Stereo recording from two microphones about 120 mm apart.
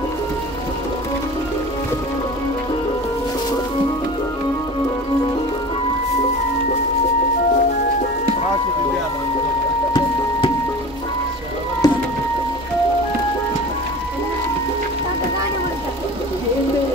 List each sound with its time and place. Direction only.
11.8 s music: 30° left (ahead or behind)